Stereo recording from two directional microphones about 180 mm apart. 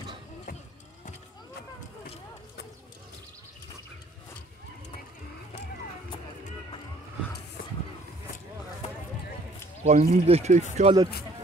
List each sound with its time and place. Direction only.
9.8 s speech: 35° right (ahead or behind)